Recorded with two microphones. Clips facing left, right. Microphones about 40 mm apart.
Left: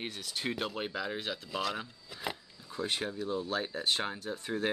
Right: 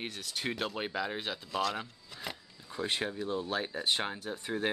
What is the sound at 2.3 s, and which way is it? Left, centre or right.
Speech, centre.